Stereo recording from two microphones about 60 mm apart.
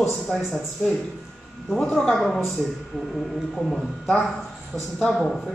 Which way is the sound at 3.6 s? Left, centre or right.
Centre.